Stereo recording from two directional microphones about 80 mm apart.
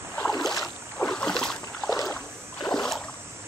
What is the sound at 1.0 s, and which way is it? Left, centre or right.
Boat, centre.